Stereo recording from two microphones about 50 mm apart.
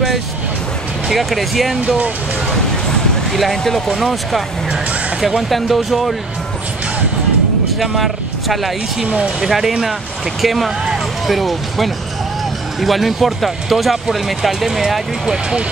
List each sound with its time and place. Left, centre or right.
1.1 s speech: centre
1.8 s speech: right
2.5 s speech: centre
5.5 s speech: centre
7.8 s speech: centre
9.0 s speech: right
9.4 s speech: centre